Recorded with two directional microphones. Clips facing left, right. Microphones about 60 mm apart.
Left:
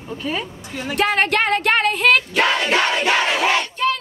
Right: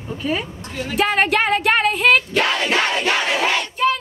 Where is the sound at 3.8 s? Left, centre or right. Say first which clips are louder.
Right 3 dB; centre.